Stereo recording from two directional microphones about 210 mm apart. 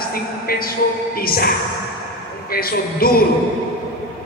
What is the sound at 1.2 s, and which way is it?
Speech, 45° left (ahead or behind).